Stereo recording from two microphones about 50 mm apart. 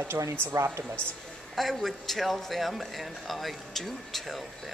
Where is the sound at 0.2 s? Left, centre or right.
Right.